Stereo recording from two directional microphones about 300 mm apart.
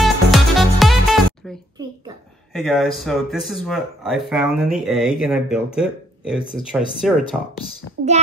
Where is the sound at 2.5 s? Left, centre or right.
Centre.